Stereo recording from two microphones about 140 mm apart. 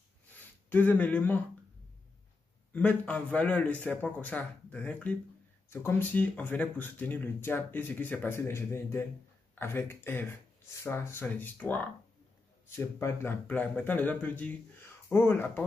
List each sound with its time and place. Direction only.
0.7 s speech: 10° left (ahead or behind)
2.7 s speech: 10° left (ahead or behind)